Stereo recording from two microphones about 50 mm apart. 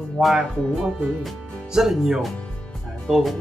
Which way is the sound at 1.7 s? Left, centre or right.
Centre.